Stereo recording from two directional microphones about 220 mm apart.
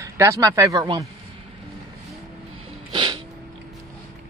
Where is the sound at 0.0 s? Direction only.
15° right (ahead or behind).